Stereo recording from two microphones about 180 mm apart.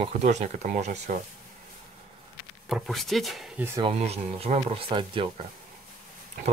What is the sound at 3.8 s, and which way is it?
Speech, 35° right (ahead or behind).